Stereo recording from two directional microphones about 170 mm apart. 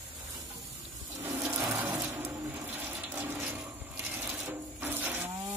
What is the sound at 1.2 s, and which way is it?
Water, 15° right (ahead or behind).